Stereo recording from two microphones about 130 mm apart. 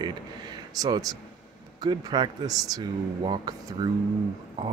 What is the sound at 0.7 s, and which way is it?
Speech, 30° right (ahead or behind).